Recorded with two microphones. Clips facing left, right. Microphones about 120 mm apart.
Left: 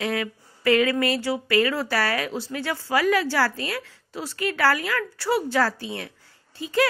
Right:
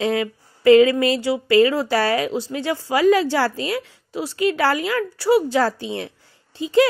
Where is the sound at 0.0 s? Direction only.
25° right (ahead or behind).